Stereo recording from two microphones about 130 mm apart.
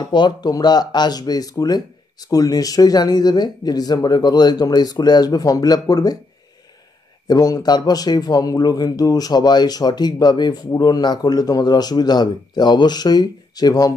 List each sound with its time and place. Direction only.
0.1 s speech: 35° left (ahead or behind)
7.2 s speech: 30° left (ahead or behind)